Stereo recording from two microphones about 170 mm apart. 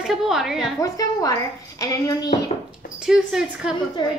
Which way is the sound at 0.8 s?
20° left (ahead or behind).